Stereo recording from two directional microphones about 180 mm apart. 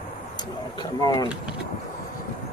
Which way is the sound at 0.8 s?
20° left (ahead or behind).